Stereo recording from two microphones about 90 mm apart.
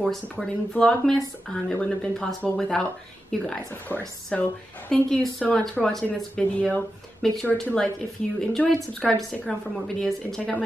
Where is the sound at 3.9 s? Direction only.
20° left (ahead or behind).